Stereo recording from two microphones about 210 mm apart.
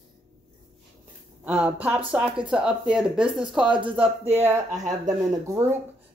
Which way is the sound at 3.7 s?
20° right (ahead or behind).